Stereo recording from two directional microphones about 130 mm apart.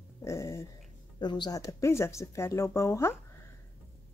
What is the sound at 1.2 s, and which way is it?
Speech, 35° left (ahead or behind).